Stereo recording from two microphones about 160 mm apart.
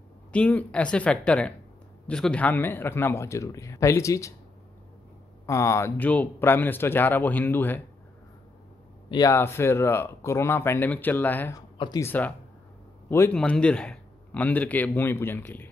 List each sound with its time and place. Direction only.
0.3 s speech: 10° left (ahead or behind)
5.5 s speech: 20° left (ahead or behind)
9.1 s speech: 20° left (ahead or behind)